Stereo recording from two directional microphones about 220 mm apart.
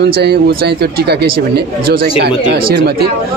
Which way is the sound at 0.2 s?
45° right (ahead or behind).